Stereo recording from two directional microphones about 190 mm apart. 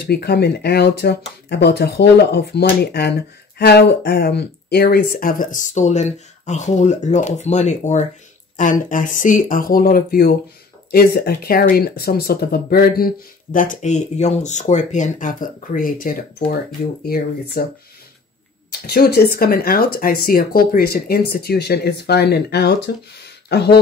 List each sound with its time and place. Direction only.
0.0 s speech: 60° left (ahead or behind)
18.7 s speech: 55° left (ahead or behind)